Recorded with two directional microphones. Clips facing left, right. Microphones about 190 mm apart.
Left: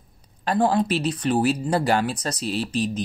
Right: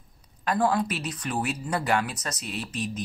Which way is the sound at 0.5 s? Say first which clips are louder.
Left 4 dB; 30° left (ahead or behind).